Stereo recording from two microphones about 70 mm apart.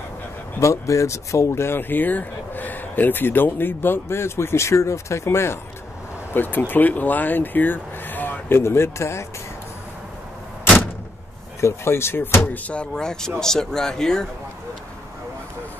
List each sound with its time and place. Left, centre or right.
0.6 s speech: left
11.6 s speech: left
12.4 s speech: centre